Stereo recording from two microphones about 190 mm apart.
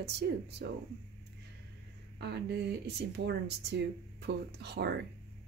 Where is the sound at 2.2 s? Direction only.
60° right (ahead or behind).